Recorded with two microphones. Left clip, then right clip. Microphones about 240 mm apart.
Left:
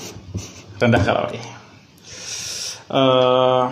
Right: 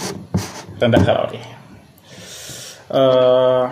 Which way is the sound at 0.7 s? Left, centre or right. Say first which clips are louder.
Right 2 dB; left.